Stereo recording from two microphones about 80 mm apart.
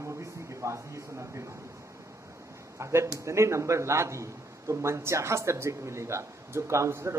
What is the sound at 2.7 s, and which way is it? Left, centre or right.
A man's voice, right.